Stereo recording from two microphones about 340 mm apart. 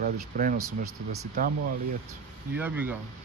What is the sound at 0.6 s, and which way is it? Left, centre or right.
Speech, right.